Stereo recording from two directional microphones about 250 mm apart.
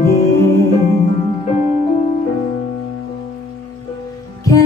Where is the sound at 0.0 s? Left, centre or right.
Centre.